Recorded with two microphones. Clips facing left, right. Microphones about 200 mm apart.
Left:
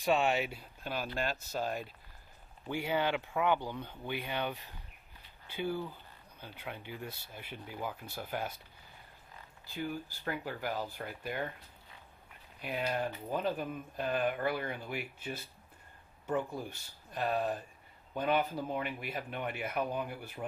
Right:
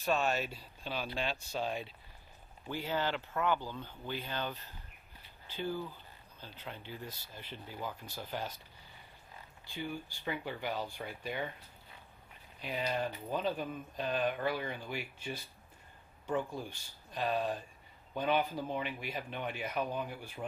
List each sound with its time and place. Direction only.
0.0 s speech: 15° left (ahead or behind)
5.6 s speech: 10° left (ahead or behind)
9.7 s speech: 5° left (ahead or behind)
12.6 s speech: 5° left (ahead or behind)
16.3 s speech: 5° left (ahead or behind)